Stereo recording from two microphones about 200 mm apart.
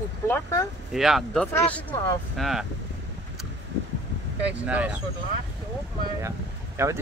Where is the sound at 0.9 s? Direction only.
Centre (ahead or behind).